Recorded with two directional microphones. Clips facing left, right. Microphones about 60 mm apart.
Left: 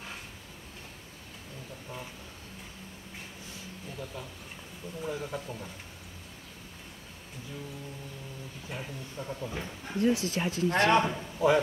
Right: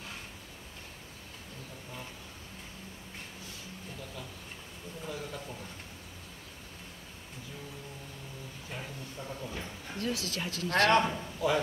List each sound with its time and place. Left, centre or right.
5.0 s speech: centre
8.6 s speech: centre
9.5 s speech: centre
10.9 s a man's voice: centre
11.3 s speech: centre